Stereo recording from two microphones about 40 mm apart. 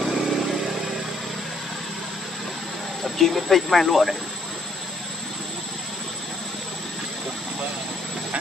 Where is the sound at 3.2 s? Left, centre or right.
Centre.